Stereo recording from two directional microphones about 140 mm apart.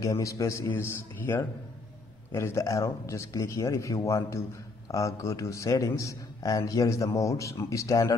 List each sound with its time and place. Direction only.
0.0 s a man's voice: 20° left (ahead or behind)